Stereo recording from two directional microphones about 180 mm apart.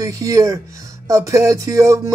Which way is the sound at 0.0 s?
20° right (ahead or behind).